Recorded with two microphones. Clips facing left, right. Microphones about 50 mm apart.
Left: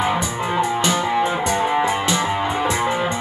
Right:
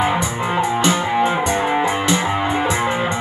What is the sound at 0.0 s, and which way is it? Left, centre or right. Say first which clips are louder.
Music: right 2 dB; right.